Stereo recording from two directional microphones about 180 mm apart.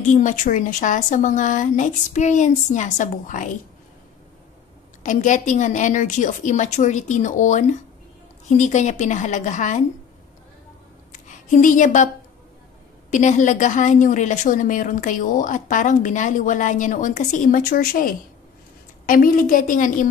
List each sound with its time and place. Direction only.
0.0 s a woman's voice: 45° left (ahead or behind)
5.0 s a woman's voice: 45° left (ahead or behind)
11.2 s speech: 45° left (ahead or behind)
13.1 s a woman's voice: 40° left (ahead or behind)